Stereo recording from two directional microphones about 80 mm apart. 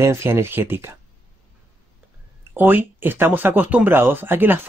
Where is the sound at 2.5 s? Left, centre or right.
Right.